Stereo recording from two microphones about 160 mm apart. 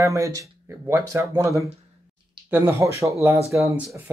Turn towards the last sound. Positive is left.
turn(degrees=-20)  # may be behind; listen again after turning